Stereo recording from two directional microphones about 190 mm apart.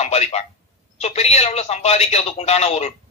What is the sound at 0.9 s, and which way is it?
A man's voice, 35° left (ahead or behind).